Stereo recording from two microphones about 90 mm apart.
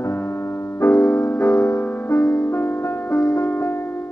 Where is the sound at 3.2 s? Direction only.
40° left (ahead or behind).